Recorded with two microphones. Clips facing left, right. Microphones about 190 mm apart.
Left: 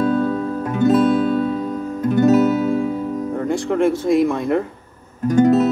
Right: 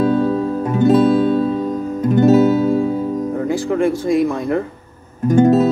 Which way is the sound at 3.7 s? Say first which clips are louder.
Left 1 dB; centre (ahead or behind).